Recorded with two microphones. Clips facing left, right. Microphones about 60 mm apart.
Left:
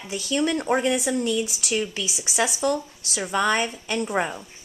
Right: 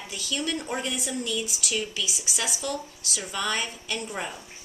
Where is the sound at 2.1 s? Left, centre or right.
Left.